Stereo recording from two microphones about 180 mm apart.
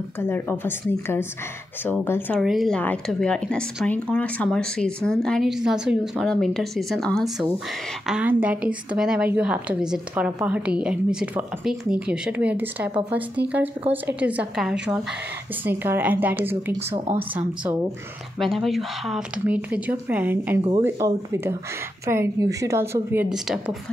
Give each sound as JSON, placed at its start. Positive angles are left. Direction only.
{"t": 0.2, "sound": "a woman's voice", "side_deg": 10}
{"t": 2.4, "sound": "a woman's voice", "side_deg": 0}
{"t": 14.0, "sound": "a woman's voice", "side_deg": -10}
{"t": 23.3, "sound": "speech", "side_deg": 0}